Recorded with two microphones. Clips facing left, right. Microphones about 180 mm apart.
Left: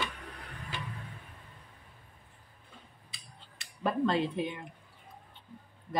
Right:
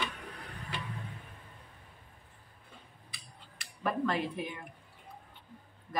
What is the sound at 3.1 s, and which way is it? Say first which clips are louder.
Scissors: right 1 dB; 25° left (ahead or behind).